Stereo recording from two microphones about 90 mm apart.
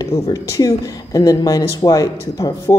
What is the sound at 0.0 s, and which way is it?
A woman's voice, 40° left (ahead or behind).